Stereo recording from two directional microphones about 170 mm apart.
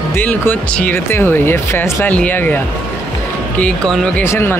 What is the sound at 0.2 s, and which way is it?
Speech, 10° left (ahead or behind).